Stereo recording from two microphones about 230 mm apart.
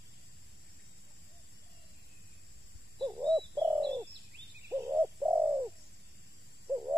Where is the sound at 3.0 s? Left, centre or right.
Centre.